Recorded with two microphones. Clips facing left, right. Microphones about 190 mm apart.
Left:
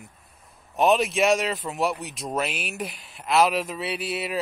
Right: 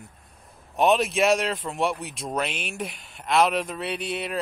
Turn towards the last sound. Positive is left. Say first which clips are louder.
# left 1 dB
turn(degrees=5)  # may be behind; listen again after turning